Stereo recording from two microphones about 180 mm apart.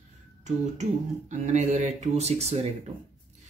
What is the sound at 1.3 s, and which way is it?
Speech, 40° right (ahead or behind).